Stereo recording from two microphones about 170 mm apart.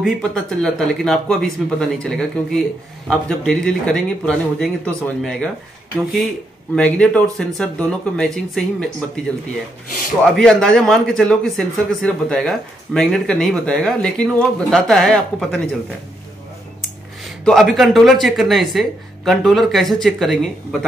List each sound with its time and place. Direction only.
0.0 s speech: 5° left (ahead or behind)
6.7 s speech: 5° left (ahead or behind)
10.3 s speech: 5° left (ahead or behind)
17.5 s speech: centre (ahead or behind)